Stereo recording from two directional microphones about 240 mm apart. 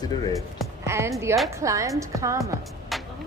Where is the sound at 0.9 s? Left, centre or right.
Centre.